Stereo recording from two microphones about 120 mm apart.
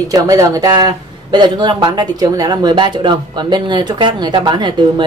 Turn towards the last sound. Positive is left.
turn(degrees=-40)  # may be behind; listen again after turning